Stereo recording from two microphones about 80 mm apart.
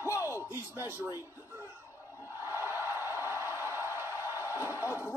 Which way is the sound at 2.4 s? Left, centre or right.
Right.